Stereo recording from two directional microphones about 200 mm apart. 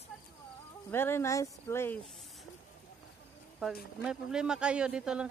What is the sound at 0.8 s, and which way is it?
Speech, 10° left (ahead or behind).